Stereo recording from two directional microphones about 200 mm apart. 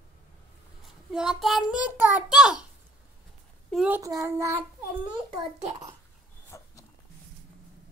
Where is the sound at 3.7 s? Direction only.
5° right (ahead or behind).